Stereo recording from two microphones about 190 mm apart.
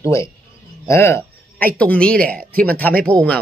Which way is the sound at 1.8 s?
5° left (ahead or behind).